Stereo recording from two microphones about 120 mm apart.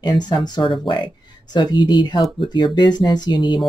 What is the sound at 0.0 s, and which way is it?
Speech, 40° left (ahead or behind).